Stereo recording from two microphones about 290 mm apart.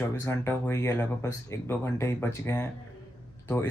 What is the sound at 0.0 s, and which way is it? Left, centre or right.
Speech, centre.